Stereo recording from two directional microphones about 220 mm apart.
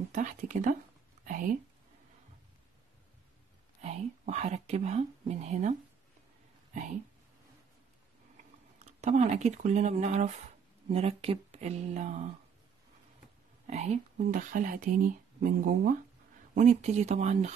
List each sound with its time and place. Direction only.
0.1 s speech: 35° right (ahead or behind)
1.2 s a sound: 35° right (ahead or behind)
3.8 s speech: 30° right (ahead or behind)
9.0 s speech: 30° right (ahead or behind)
13.7 s speech: 30° right (ahead or behind)